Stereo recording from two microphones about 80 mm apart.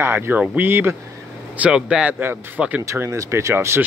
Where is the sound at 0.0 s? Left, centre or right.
Right.